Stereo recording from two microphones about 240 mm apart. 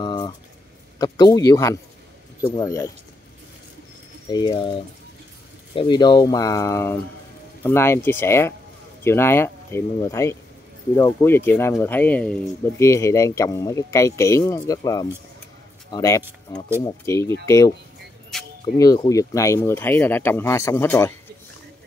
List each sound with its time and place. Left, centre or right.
0.0 s a sound: centre
0.9 s speech: centre
4.3 s speech: centre
18.3 s music: centre
18.8 s speech: centre